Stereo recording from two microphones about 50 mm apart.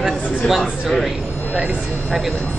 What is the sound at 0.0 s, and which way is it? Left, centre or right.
A man's voice, centre.